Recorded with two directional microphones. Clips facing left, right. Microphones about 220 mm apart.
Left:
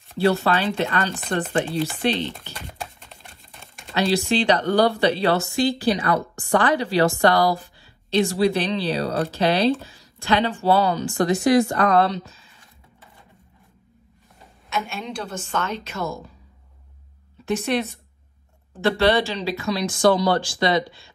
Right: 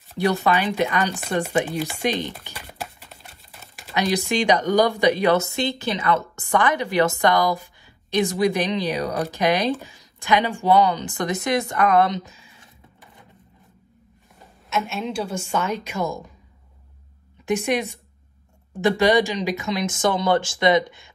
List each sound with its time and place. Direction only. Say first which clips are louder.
0.2 s a woman's voice: left 1 dB; 15° right (ahead or behind)
2.6 s a sound: right 2 dB; centre (ahead or behind)
3.9 s a woman's voice: left 2 dB; 15° right (ahead or behind)
14.7 s a woman's voice: right 3 dB; centre (ahead or behind)
17.5 s a woman's voice: right 1 dB; 15° right (ahead or behind)